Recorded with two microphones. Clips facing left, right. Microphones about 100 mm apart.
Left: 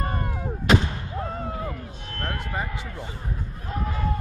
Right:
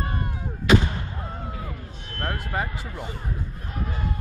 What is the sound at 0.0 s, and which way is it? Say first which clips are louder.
Artillery fire: left 2 dB; 50° left (ahead or behind).